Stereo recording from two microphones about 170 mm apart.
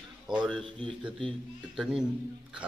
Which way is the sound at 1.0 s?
Centre (ahead or behind).